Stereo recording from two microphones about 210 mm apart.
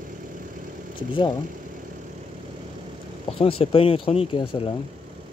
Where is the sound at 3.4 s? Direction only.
25° left (ahead or behind).